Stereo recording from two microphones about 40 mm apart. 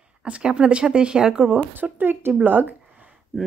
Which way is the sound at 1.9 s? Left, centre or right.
Right.